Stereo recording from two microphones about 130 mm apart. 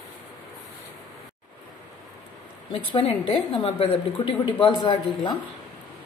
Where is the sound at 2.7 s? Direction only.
40° left (ahead or behind).